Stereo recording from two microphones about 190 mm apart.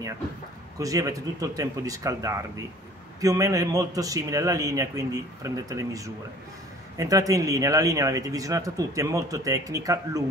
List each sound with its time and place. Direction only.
0.7 s speech: 15° right (ahead or behind)